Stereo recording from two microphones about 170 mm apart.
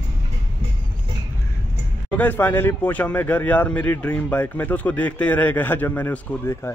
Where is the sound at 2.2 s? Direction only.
10° left (ahead or behind).